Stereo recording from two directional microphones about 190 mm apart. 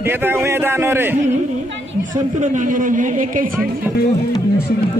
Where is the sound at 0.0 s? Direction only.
10° right (ahead or behind).